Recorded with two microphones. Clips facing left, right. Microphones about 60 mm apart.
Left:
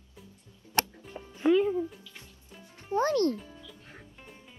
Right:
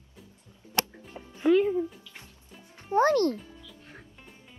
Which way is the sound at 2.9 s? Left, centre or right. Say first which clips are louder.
Right 3 dB; right.